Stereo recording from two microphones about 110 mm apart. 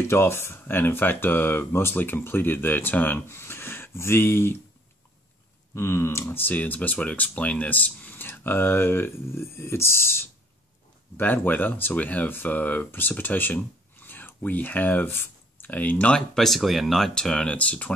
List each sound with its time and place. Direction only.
0.1 s speech: 20° left (ahead or behind)
5.8 s speech: 25° left (ahead or behind)